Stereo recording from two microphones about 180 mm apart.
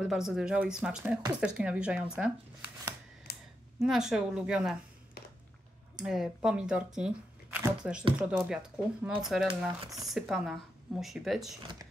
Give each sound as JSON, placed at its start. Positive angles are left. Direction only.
{"t": 0.0, "sound": "speech", "side_deg": 0}
{"t": 3.3, "sound": "a sound", "side_deg": 60}
{"t": 3.8, "sound": "speech", "side_deg": -5}
{"t": 5.9, "sound": "speech", "side_deg": -5}